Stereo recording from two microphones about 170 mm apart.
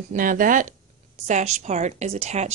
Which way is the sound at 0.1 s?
55° right (ahead or behind).